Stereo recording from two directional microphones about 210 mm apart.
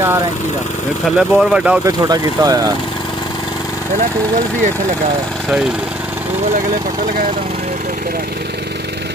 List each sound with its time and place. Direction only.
1.1 s speech: 5° right (ahead or behind)
1.9 s speech: 15° right (ahead or behind)